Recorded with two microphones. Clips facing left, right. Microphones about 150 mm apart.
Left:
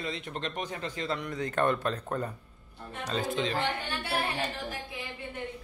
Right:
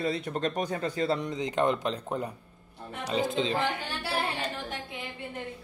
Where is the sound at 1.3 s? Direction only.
20° right (ahead or behind).